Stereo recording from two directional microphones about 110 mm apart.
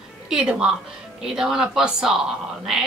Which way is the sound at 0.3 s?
5° right (ahead or behind).